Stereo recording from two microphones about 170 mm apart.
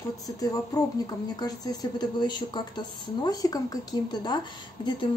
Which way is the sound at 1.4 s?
25° left (ahead or behind).